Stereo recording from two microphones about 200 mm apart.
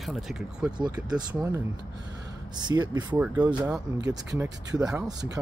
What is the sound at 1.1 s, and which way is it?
Speech, 20° right (ahead or behind).